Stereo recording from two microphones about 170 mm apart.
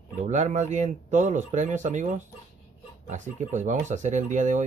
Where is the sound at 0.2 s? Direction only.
45° right (ahead or behind).